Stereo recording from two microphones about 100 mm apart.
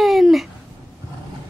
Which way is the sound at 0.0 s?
Centre (ahead or behind).